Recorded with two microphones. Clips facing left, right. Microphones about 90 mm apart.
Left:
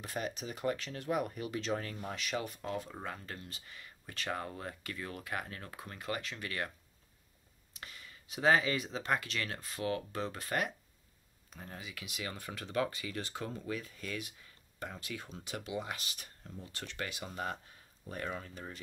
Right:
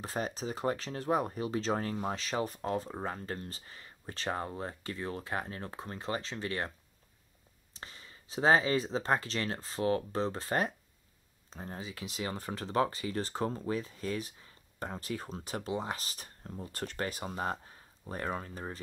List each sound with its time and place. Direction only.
0.0 s speech: 35° right (ahead or behind)
7.7 s speech: 30° right (ahead or behind)